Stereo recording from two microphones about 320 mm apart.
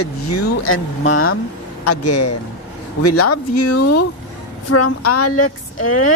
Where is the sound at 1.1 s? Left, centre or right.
Left.